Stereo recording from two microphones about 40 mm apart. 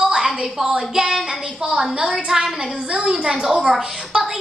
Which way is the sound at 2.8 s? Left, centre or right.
Right.